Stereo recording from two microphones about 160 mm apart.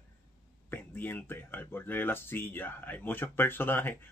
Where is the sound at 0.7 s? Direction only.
10° left (ahead or behind).